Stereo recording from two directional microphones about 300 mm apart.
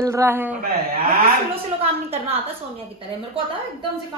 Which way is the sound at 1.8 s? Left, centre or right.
Centre.